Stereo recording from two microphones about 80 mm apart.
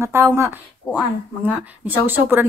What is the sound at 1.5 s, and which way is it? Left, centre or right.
Speech, right.